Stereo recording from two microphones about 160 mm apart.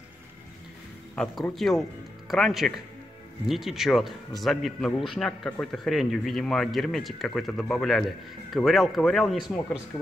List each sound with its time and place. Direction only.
1.1 s speech: 5° left (ahead or behind)